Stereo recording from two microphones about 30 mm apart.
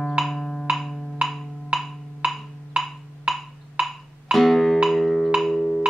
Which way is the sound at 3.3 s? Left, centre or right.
Centre.